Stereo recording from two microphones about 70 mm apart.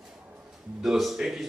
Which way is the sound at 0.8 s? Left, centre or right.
Centre.